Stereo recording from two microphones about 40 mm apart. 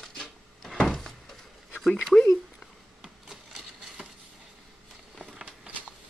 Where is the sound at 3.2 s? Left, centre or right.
Centre.